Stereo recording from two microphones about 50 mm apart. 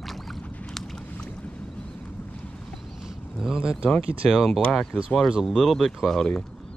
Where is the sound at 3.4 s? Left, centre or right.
Centre.